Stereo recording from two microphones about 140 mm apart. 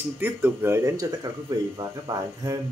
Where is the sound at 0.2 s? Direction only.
15° right (ahead or behind).